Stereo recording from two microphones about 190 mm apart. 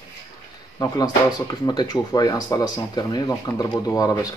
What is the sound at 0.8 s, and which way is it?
Speech, 20° left (ahead or behind).